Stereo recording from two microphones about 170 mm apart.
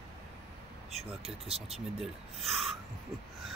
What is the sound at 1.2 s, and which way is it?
Speech, 35° right (ahead or behind).